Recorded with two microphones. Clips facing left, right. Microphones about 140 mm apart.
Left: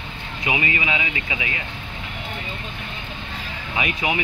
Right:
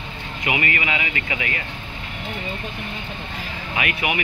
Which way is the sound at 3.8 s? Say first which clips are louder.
Even; 20° left (ahead or behind).